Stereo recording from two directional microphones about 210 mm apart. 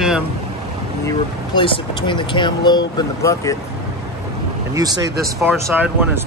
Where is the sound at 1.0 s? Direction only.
25° left (ahead or behind).